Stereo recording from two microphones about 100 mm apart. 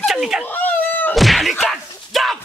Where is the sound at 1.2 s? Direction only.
Centre (ahead or behind).